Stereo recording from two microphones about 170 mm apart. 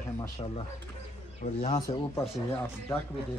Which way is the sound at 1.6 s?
30° left (ahead or behind).